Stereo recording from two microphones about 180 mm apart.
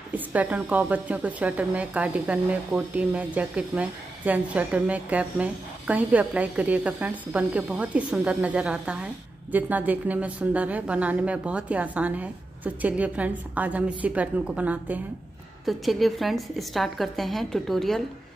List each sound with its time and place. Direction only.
0.1 s a woman's voice: 10° right (ahead or behind)